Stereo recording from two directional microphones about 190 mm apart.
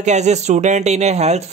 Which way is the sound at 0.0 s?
35° right (ahead or behind).